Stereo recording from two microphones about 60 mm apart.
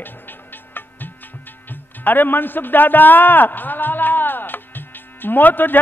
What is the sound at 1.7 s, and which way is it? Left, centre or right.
Speech, left.